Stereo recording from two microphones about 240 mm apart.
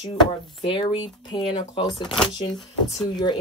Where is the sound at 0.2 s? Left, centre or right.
Left.